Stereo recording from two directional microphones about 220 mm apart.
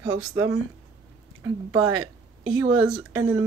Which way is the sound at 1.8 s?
80° right.